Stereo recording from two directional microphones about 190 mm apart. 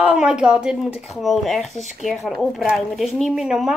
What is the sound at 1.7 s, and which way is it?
Speech, 40° left (ahead or behind).